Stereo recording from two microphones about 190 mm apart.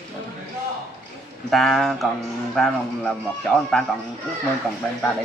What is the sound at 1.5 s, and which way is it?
Speech, centre (ahead or behind).